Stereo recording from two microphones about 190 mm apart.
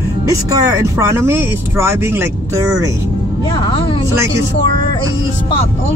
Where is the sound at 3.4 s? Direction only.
30° left (ahead or behind).